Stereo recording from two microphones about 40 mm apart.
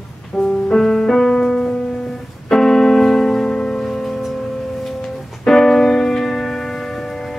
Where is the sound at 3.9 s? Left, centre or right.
Centre.